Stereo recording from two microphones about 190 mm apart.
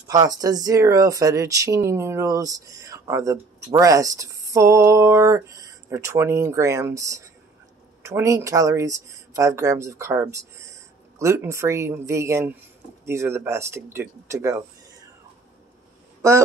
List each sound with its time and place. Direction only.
0.1 s speech: 20° right (ahead or behind)
16.2 s speech: 15° right (ahead or behind)